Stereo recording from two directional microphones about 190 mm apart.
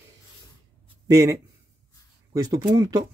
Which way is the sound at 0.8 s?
15° right (ahead or behind).